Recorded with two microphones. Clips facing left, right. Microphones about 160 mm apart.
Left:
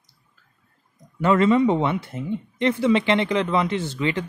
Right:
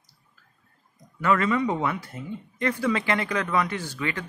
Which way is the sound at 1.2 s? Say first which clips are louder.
Left 6 dB; 25° left (ahead or behind).